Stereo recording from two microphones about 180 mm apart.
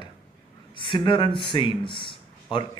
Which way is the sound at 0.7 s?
30° left (ahead or behind).